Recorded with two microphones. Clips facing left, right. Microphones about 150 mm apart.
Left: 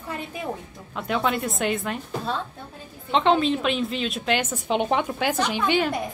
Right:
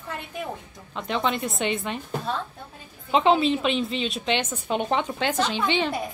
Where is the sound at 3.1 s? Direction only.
5° right (ahead or behind).